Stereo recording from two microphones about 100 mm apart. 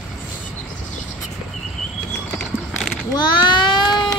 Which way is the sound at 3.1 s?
50° left (ahead or behind).